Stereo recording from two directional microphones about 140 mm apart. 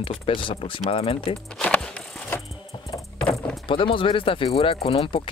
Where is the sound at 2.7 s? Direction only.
30° left (ahead or behind).